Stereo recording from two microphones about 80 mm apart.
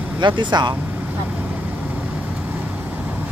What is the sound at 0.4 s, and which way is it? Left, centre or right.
Speech, right.